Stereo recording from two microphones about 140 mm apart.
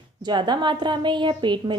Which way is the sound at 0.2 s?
30° right (ahead or behind).